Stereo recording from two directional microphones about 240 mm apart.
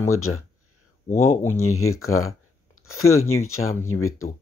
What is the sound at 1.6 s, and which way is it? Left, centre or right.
Speech, left.